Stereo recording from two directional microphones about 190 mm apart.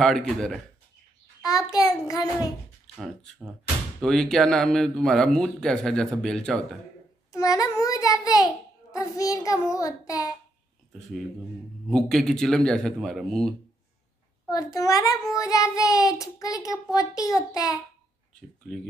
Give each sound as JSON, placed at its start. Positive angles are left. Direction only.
{"t": 1.4, "sound": "a child's voice", "side_deg": 20}
{"t": 3.0, "sound": "a man's voice", "side_deg": 0}
{"t": 7.3, "sound": "a child's voice", "side_deg": 15}
{"t": 11.9, "sound": "a man's voice", "side_deg": 0}
{"t": 14.5, "sound": "a child's voice", "side_deg": 20}
{"t": 18.6, "sound": "a man's voice", "side_deg": 0}